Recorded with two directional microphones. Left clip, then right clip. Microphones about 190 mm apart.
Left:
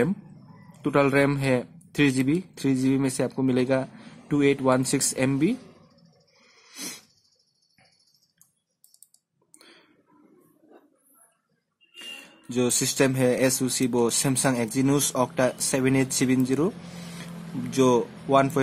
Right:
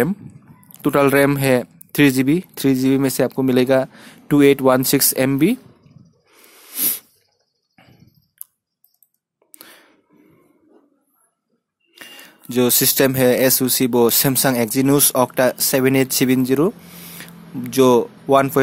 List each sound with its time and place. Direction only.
0.8 s speech: 55° right (ahead or behind)
6.7 s sneeze: 45° right (ahead or behind)
9.5 s a sound: 50° right (ahead or behind)
11.9 s speech: 45° right (ahead or behind)